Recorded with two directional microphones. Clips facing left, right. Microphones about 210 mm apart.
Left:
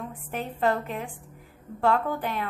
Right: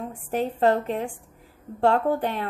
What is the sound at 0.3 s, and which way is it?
A woman's voice, 35° right (ahead or behind).